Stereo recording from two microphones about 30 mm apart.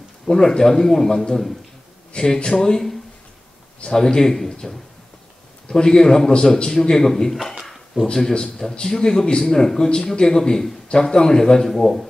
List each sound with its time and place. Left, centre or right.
0.3 s speech: centre
2.1 s a man's voice: left
5.7 s a man's voice: left
7.6 s a sound: centre
8.1 s a man's voice: left
9.4 s a man's voice: centre
11.7 s speech: centre